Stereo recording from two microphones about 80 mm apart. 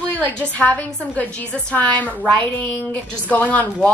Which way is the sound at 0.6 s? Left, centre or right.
Centre.